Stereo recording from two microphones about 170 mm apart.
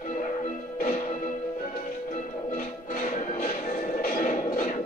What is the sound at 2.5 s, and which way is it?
Music, 50° left (ahead or behind).